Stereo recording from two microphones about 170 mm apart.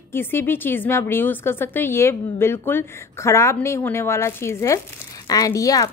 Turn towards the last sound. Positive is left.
turn(degrees=20)  # may be behind; listen again after turning